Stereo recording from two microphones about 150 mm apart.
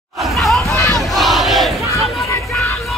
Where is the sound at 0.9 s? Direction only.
Centre (ahead or behind).